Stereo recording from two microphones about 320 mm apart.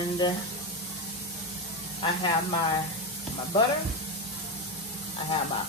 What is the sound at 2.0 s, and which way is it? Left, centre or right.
Speech, centre.